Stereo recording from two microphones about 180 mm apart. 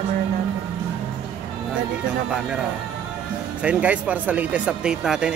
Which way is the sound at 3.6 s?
5° right (ahead or behind).